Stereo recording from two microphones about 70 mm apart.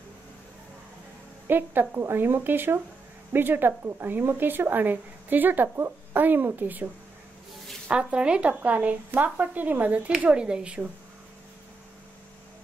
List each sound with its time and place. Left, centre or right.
1.5 s a woman's voice: right
7.9 s speech: centre